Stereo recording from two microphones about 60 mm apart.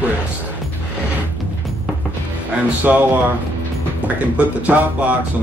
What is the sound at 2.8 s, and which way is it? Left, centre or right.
Speech, right.